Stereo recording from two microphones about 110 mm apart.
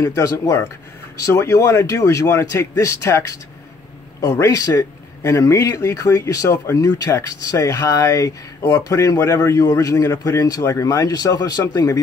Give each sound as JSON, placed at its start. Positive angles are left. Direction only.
{"t": 0.0, "sound": "a man's voice", "side_deg": 30}